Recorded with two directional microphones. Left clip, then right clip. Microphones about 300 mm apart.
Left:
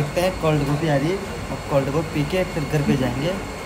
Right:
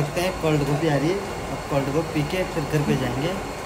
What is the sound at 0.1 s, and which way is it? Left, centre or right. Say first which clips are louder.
Speech: left 4 dB; centre.